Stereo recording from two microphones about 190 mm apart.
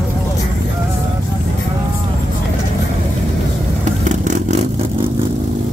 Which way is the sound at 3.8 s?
40° right (ahead or behind).